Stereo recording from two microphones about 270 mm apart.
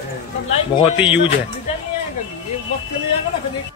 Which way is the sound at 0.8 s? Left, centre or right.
Centre.